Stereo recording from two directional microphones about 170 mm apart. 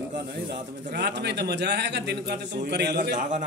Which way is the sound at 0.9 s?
80° right.